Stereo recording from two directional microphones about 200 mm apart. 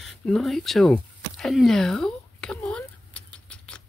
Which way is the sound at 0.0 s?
Centre (ahead or behind).